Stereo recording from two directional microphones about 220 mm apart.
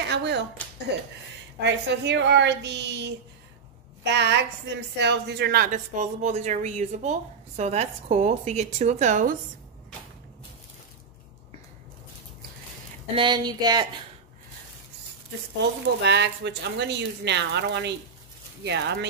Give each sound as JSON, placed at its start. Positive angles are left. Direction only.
{"t": 0.1, "sound": "a woman's voice", "side_deg": -50}
{"t": 13.1, "sound": "speech", "side_deg": -20}
{"t": 16.0, "sound": "speech", "side_deg": -50}